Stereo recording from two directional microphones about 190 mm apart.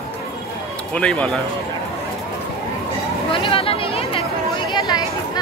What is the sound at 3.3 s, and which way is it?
Chatter, 30° left (ahead or behind).